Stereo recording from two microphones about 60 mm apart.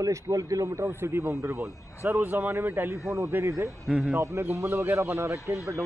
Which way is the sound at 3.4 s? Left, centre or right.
Right.